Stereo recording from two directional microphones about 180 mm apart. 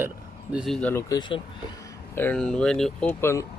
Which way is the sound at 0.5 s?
Centre (ahead or behind).